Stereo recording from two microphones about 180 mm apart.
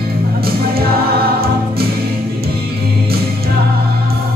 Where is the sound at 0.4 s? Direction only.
60° right (ahead or behind).